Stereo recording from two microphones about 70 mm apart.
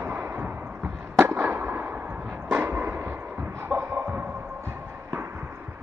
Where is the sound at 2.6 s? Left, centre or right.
Right.